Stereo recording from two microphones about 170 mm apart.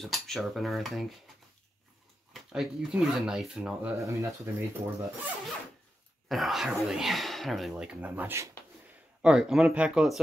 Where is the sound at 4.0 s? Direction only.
15° right (ahead or behind).